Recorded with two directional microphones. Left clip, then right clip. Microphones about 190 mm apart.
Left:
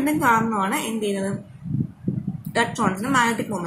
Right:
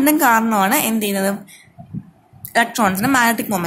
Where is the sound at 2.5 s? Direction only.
55° right (ahead or behind).